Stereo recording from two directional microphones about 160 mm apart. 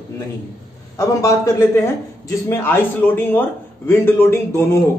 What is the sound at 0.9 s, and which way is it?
A man's voice, 20° left (ahead or behind).